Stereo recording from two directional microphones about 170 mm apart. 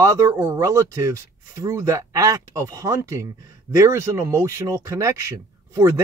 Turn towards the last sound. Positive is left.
turn(degrees=-15)  # may be behind; listen again after turning